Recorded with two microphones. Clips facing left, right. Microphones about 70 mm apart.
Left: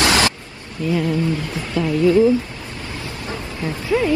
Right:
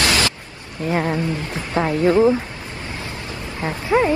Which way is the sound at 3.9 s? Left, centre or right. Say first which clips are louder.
Right 2 dB; right.